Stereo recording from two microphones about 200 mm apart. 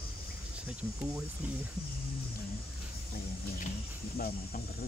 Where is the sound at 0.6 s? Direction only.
5° right (ahead or behind).